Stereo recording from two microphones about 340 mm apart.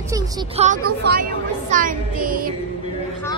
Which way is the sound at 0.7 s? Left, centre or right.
Right.